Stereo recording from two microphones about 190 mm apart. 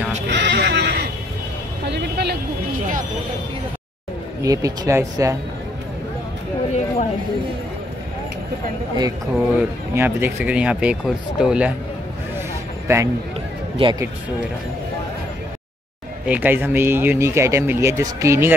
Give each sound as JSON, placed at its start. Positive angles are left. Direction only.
{"t": 0.3, "sound": "neigh", "side_deg": -65}
{"t": 1.9, "sound": "vehicle", "side_deg": -60}
{"t": 4.4, "sound": "speech", "side_deg": -20}
{"t": 9.3, "sound": "speech", "side_deg": -5}
{"t": 12.8, "sound": "a man's voice", "side_deg": -15}
{"t": 13.8, "sound": "speech", "side_deg": -30}
{"t": 16.3, "sound": "speech", "side_deg": -10}